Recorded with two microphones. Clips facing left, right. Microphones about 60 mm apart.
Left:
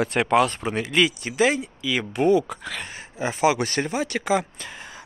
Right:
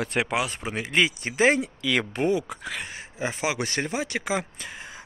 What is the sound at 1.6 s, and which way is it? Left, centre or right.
Speech, right.